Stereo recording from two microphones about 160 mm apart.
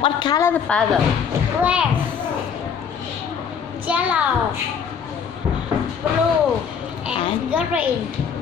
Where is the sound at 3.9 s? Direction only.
10° right (ahead or behind).